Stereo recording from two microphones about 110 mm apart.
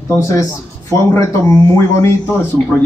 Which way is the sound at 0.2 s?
30° left (ahead or behind).